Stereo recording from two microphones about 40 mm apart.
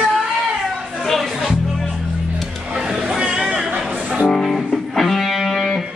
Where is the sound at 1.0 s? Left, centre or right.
Centre.